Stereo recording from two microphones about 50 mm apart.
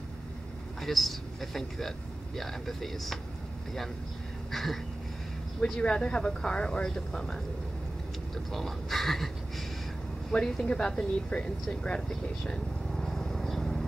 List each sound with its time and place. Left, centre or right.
0.8 s speech: centre
4.5 s a sound: centre
5.6 s speech: left
8.5 s speech: centre
10.3 s speech: centre
11.8 s vehicle: centre